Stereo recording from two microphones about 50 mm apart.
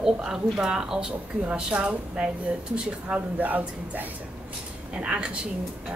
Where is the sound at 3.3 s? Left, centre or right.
Right.